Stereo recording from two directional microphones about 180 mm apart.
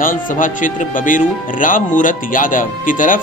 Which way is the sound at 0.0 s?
50° left (ahead or behind).